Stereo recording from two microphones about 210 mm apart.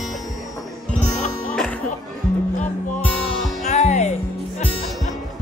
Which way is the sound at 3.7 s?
35° left (ahead or behind).